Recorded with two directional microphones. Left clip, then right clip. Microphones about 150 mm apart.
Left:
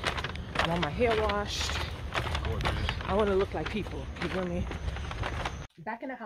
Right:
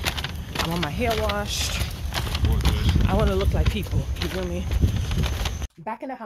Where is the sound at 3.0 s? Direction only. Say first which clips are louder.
Right 2 dB; 5° left (ahead or behind).